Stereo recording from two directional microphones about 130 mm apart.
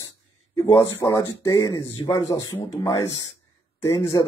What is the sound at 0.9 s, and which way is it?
Speech, 25° left (ahead or behind).